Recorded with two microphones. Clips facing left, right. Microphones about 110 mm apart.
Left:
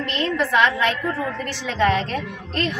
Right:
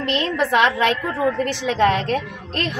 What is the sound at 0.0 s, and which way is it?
A woman's voice, 70° right (ahead or behind).